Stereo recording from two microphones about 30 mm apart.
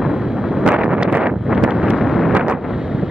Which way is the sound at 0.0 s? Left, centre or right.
Centre.